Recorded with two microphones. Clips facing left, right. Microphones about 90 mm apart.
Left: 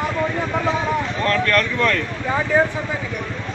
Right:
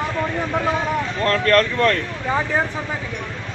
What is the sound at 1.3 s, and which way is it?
Speech, 35° right (ahead or behind).